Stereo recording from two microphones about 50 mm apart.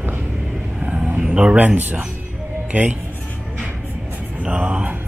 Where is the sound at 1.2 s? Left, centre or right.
Centre.